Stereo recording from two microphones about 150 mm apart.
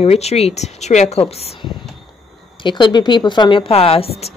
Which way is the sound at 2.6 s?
30° left (ahead or behind).